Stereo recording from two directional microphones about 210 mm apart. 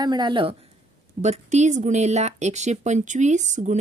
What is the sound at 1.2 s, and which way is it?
Speech, 35° right (ahead or behind).